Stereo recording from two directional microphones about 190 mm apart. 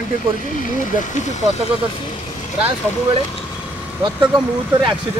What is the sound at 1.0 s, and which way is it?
Speech, 40° left (ahead or behind).